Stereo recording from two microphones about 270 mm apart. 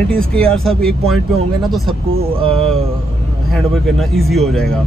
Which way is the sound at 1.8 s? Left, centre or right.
Centre.